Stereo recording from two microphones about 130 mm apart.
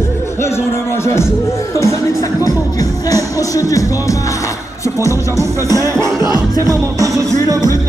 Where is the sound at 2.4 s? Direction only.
30° left (ahead or behind).